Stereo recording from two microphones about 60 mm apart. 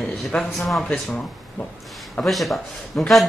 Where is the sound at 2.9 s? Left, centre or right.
Centre.